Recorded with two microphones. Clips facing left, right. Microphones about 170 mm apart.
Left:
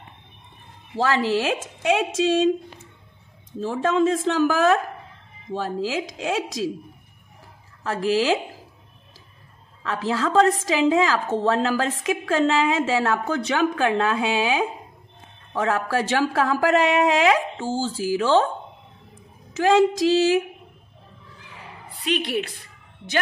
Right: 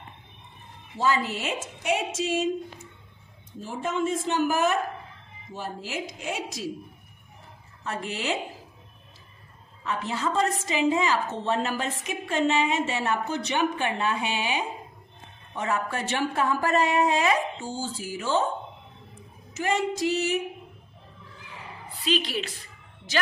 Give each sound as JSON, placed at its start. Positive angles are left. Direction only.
{"t": 0.9, "sound": "a woman's voice", "side_deg": 90}
{"t": 7.8, "sound": "a woman's voice", "side_deg": 90}
{"t": 9.8, "sound": "a woman's voice", "side_deg": 90}
{"t": 19.5, "sound": "a woman's voice", "side_deg": 90}
{"t": 22.0, "sound": "a woman's voice", "side_deg": 60}